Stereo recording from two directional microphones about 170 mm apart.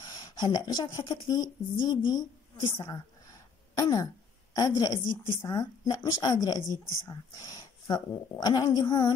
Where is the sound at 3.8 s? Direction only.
20° left (ahead or behind).